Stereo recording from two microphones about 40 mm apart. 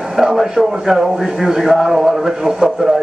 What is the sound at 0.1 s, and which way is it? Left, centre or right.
Speech, centre.